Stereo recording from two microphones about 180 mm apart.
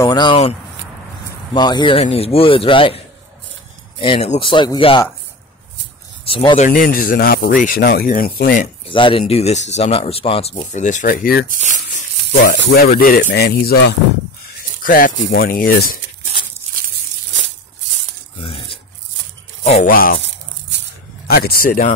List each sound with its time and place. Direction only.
0.0 s speech: 25° left (ahead or behind)
1.5 s speech: 25° left (ahead or behind)
4.0 s speech: 30° left (ahead or behind)
6.2 s speech: 30° left (ahead or behind)
6.7 s speech: 50° left (ahead or behind)
8.8 s speech: 30° left (ahead or behind); by 11.4 s 50° left (ahead or behind)
11.5 s speech: 45° right (ahead or behind)
12.5 s speech: 70° left (ahead or behind)
14.8 s speech: 50° left (ahead or behind)
15.1 s speech: 65° left (ahead or behind)
18.4 s rub: 30° left (ahead or behind)
19.6 s speech: 35° left (ahead or behind)
19.9 s speech: 55° left (ahead or behind)
21.3 s speech: 55° left (ahead or behind)